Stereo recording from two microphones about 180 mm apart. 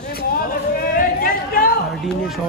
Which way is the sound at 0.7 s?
55° left (ahead or behind).